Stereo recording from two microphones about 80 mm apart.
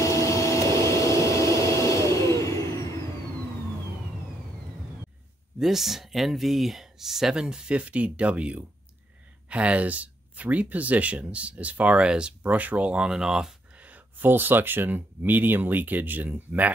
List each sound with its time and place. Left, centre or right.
0.0 s vacuum cleaner: left
0.7 s a sound: left
5.6 s speech: centre
13.7 s speech: centre